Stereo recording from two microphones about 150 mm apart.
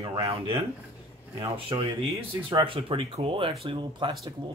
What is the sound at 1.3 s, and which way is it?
Speech, 35° right (ahead or behind).